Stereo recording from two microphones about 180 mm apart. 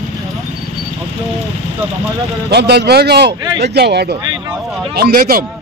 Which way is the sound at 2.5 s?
65° right (ahead or behind).